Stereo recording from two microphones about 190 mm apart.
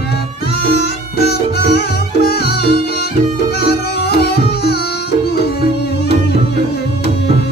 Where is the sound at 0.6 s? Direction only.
55° left (ahead or behind).